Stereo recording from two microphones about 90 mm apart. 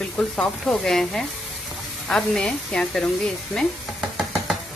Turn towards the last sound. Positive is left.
turn(degrees=-5)  # may be behind; listen again after turning